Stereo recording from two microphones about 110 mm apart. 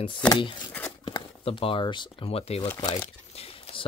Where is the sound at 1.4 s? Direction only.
55° left (ahead or behind).